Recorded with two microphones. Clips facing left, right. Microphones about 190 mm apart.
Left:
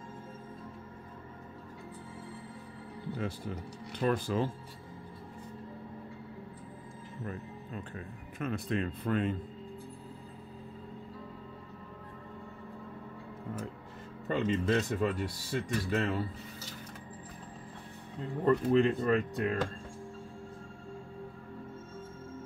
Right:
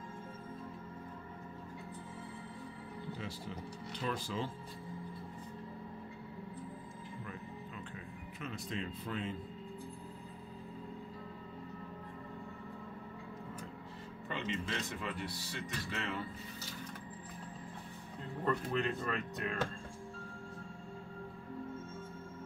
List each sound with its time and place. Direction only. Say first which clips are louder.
3.2 s speech: left 6 dB; 55° left (ahead or behind)
8.4 s speech: left 9 dB; 55° left (ahead or behind)
14.2 s speech: left 10 dB; 45° left (ahead or behind)
18.4 s speech: left 9 dB; 35° left (ahead or behind)